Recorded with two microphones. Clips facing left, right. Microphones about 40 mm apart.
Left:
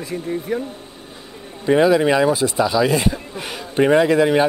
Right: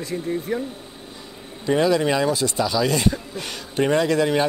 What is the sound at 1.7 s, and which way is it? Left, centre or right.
Speech, centre.